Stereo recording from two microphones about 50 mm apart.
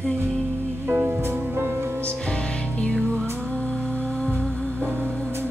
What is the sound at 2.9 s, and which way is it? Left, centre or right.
Music, centre.